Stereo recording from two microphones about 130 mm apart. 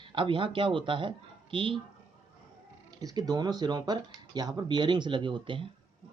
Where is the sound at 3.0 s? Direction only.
30° right (ahead or behind).